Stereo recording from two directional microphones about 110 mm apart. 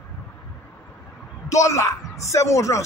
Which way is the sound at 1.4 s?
30° left (ahead or behind).